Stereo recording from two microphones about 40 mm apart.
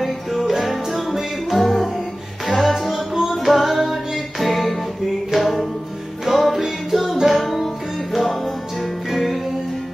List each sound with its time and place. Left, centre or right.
0.0 s music: centre